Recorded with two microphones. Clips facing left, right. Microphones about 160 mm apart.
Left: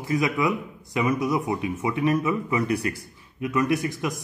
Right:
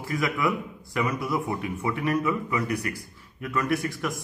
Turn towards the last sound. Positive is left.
turn(degrees=20)  # may be behind; listen again after turning